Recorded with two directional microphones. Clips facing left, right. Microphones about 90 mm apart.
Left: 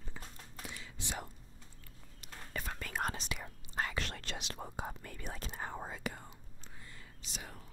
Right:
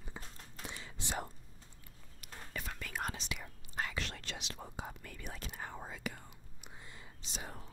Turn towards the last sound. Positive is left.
turn(degrees=-30)  # may be behind; listen again after turning